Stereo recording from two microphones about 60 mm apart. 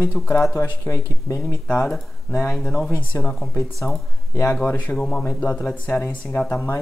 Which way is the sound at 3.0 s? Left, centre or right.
Left.